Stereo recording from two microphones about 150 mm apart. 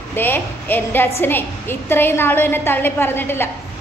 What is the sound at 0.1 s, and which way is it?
A woman's voice, 15° left (ahead or behind).